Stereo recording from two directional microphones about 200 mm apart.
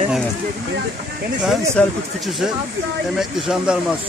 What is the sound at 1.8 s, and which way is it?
Speech, 5° left (ahead or behind).